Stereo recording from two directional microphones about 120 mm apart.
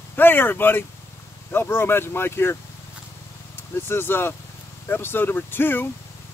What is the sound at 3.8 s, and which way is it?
Speech, 20° left (ahead or behind).